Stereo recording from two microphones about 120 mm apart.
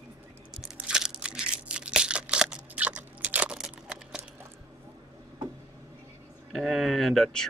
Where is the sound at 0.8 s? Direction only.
5° right (ahead or behind).